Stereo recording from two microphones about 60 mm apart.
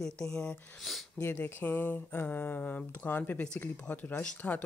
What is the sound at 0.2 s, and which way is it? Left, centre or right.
Speech, centre.